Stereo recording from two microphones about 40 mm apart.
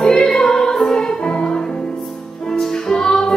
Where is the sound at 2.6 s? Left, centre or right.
Centre.